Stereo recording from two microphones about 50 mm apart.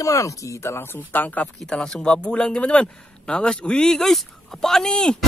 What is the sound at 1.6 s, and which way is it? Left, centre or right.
A man's voice, centre.